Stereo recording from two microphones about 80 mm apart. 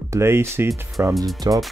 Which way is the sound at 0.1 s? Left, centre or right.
Right.